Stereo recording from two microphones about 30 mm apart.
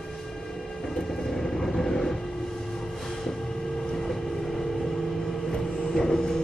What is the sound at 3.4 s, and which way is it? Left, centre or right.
Vehicle, centre.